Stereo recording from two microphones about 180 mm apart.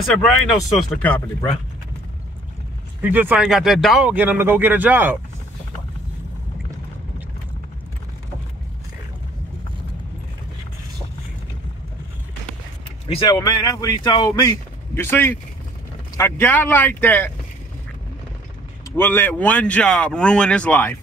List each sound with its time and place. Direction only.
0.1 s speech: centre (ahead or behind)
3.0 s speech: 10° right (ahead or behind)
13.1 s speech: 25° left (ahead or behind)
15.0 s speech: 15° left (ahead or behind)
18.9 s speech: 10° left (ahead or behind)